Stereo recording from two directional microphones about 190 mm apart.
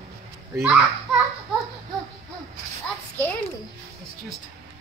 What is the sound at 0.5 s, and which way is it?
Speech, 5° right (ahead or behind).